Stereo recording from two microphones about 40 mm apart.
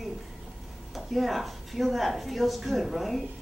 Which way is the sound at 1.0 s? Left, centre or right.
Centre.